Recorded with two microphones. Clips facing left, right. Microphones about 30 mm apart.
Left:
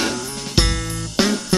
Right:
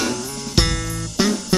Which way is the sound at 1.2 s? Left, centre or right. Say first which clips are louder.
Left 1 dB; left.